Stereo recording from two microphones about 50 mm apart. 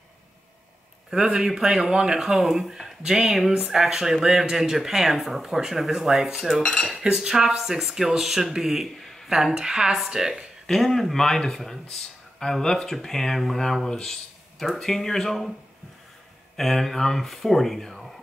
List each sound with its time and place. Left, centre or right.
1.1 s speech: centre
2.3 s speech: centre
2.7 s speech: centre
6.9 s speech: centre
9.0 s a sound: centre
9.3 s speech: centre
10.7 s speech: centre
13.8 s speech: centre
14.6 s speech: centre
16.5 s speech: centre